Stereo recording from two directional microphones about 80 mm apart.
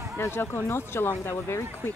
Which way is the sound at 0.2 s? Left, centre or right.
Left.